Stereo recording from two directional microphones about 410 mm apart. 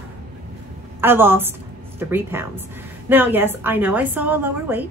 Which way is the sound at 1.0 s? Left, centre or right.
Centre.